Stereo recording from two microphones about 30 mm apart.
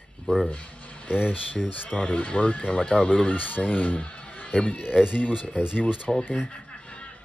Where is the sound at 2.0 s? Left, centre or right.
Left.